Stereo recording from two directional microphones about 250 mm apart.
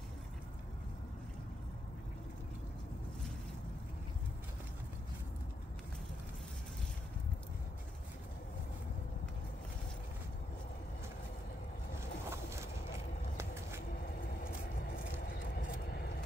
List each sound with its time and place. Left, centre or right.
12.3 s vehicle: centre
15.2 s vehicle: left